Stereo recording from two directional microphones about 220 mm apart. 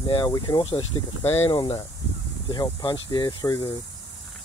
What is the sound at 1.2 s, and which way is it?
Speech, 10° left (ahead or behind).